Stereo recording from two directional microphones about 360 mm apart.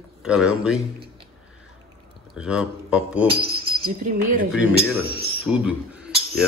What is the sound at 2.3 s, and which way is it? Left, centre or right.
Cricket, centre.